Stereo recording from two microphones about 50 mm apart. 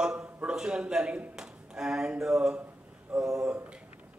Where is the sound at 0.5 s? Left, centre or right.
Centre.